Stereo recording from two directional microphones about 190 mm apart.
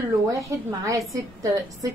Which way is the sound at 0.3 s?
15° right (ahead or behind).